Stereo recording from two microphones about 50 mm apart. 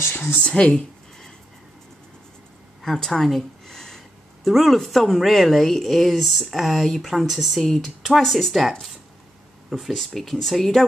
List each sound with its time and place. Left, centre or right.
0.1 s speech: left
0.4 s speech: left
2.8 s a sound: centre
4.5 s speech: centre
5.3 s speech: centre
9.8 s speech: centre